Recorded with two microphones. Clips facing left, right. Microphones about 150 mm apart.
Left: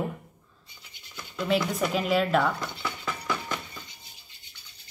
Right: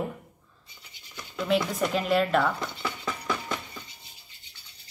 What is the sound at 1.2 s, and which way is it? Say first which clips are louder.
A woman's voice: even; centre (ahead or behind).